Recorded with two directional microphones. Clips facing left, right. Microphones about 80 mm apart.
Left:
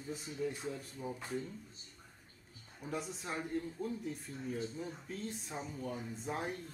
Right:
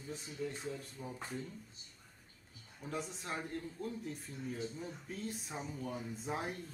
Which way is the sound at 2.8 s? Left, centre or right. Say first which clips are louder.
Left 1 dB; centre.